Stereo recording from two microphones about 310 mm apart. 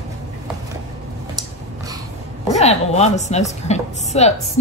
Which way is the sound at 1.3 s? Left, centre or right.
Centre.